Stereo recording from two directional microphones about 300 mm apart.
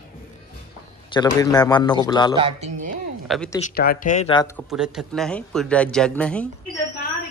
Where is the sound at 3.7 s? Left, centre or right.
Left.